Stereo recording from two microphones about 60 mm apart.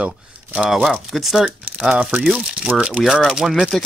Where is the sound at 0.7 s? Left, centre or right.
Centre.